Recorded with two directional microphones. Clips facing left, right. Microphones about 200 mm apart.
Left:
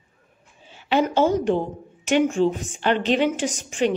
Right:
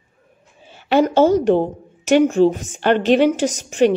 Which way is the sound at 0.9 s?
40° right (ahead or behind).